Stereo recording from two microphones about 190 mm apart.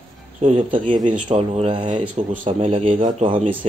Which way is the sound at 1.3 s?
30° right (ahead or behind).